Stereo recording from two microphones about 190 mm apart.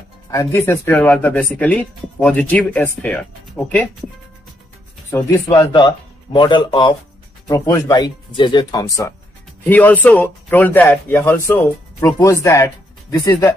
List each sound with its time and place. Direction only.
0.3 s speech: 15° left (ahead or behind)
5.1 s speech: 15° left (ahead or behind)